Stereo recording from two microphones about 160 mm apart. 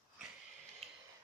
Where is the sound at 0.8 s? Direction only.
40° right (ahead or behind).